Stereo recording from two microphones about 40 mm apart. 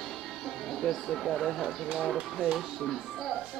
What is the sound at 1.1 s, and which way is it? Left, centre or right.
Speech, centre.